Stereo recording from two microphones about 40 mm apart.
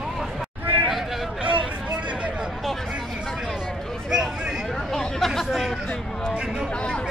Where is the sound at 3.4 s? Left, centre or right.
Centre.